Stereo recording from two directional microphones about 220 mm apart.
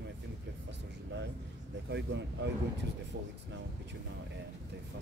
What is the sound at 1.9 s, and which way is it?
Speech, 50° right (ahead or behind).